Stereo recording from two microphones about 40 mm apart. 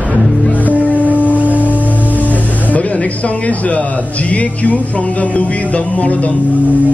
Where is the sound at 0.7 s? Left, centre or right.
Right.